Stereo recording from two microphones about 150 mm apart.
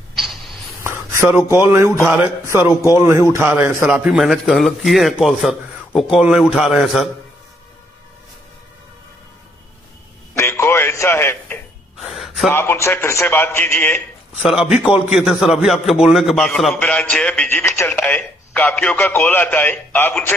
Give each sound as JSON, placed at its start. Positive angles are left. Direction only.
{"t": 0.1, "sound": "a sound", "side_deg": 0}
{"t": 0.8, "sound": "a man's voice", "side_deg": -15}
{"t": 10.3, "sound": "a sound", "side_deg": 15}
{"t": 12.1, "sound": "gasp", "side_deg": 0}
{"t": 12.4, "sound": "speech", "side_deg": 15}
{"t": 14.4, "sound": "a man's voice", "side_deg": -5}